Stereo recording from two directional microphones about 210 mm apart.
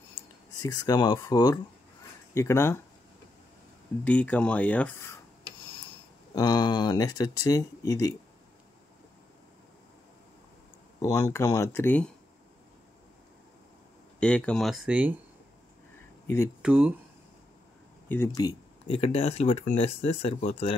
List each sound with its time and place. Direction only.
0.6 s speech: 15° left (ahead or behind)
4.0 s speech: 5° left (ahead or behind)
6.3 s speech: 20° left (ahead or behind)
11.0 s speech: 15° left (ahead or behind)
14.2 s speech: 5° left (ahead or behind)
16.6 s speech: 5° right (ahead or behind)
18.0 s speech: 10° left (ahead or behind); by 20.7 s 30° left (ahead or behind)